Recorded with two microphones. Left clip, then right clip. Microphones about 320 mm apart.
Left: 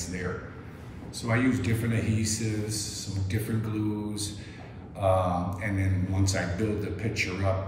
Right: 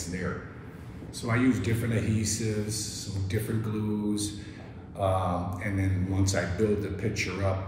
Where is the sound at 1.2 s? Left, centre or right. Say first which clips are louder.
Even; centre.